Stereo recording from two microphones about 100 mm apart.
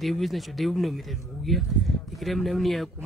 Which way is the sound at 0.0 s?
Centre (ahead or behind).